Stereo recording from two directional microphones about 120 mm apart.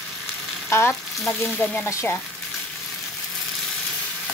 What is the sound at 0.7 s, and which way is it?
Frying, 20° left (ahead or behind).